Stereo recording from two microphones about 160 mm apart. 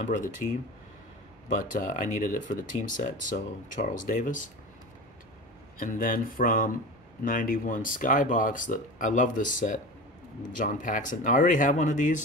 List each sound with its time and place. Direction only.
1.7 s speech: 55° left (ahead or behind)
5.8 s speech: 60° left (ahead or behind)